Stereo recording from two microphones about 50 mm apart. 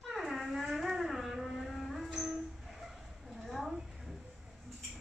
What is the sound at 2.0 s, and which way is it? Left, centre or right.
Music, centre.